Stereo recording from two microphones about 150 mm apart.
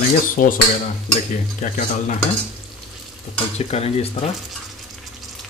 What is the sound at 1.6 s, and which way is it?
Speech, 55° left (ahead or behind).